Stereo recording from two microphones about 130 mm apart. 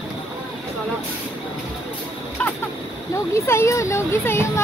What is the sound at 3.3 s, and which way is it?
Speech, 20° left (ahead or behind).